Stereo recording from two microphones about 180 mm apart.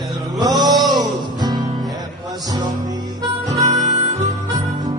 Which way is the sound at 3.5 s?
40° right (ahead or behind).